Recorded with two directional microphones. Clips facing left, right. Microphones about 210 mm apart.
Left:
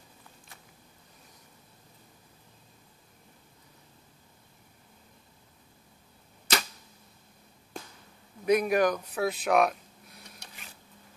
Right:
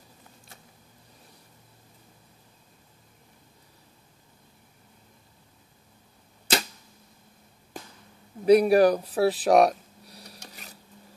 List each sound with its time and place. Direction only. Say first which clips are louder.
8.5 s speech: right 7 dB; 35° right (ahead or behind)